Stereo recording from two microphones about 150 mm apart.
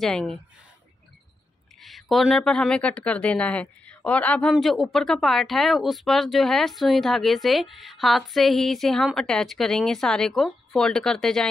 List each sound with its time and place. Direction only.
0.0 s a woman's voice: 5° left (ahead or behind)
1.8 s a woman's voice: centre (ahead or behind)